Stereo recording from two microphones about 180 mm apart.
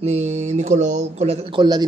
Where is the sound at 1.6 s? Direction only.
25° right (ahead or behind).